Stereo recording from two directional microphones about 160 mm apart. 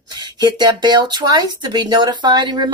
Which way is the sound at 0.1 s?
25° right (ahead or behind).